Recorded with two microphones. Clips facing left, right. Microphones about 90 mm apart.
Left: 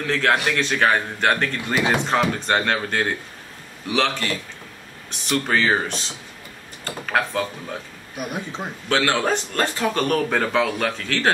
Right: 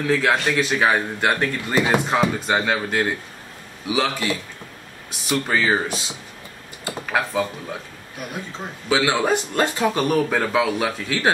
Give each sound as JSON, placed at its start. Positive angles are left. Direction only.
{"t": 0.0, "sound": "speech", "side_deg": -5}
{"t": 8.2, "sound": "speech", "side_deg": 20}
{"t": 8.8, "sound": "speech", "side_deg": -10}
{"t": 10.0, "sound": "speech", "side_deg": -5}